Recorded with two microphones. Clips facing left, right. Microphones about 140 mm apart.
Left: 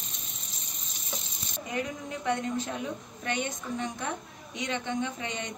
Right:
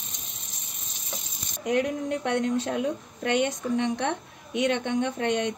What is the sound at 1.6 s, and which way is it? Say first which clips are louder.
A woman's voice: right 9 dB; 75° right (ahead or behind).